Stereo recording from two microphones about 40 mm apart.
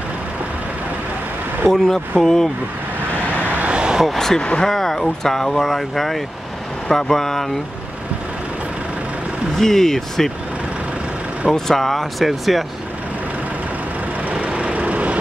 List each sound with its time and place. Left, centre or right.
1.7 s speech: centre
3.6 s vehicle: right
4.4 s speech: left
4.6 s speech: centre
9.6 s speech: centre
11.5 s speech: centre
14.3 s vehicle: right